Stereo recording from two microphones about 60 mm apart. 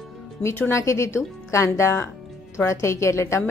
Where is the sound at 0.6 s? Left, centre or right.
Left.